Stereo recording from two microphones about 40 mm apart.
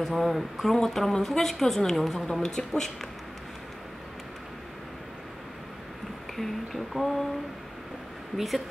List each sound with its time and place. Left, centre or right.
0.0 s a woman's voice: centre
2.4 s a woman's voice: centre
6.3 s speech: centre
8.4 s speech: centre